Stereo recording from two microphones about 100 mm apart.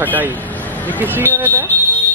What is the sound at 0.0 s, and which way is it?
Speech, 20° right (ahead or behind).